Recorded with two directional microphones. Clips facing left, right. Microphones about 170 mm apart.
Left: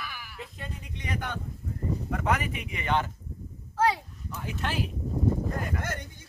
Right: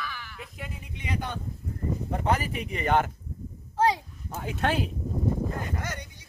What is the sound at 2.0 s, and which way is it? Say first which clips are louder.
Speech: right 2 dB; 30° right (ahead or behind).